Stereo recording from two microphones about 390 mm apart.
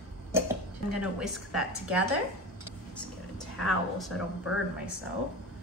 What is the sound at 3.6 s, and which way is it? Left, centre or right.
Speech, centre.